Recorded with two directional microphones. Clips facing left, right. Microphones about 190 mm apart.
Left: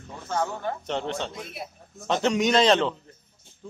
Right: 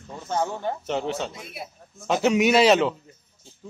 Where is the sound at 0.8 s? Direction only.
5° right (ahead or behind).